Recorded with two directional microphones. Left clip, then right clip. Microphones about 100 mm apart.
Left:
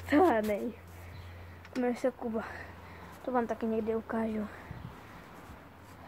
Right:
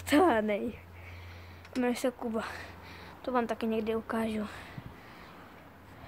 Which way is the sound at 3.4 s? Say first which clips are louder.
Right 1 dB; 15° right (ahead or behind).